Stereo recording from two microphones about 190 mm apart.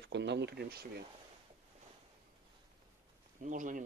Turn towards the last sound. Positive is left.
turn(degrees=-45)  # may be behind; listen again after turning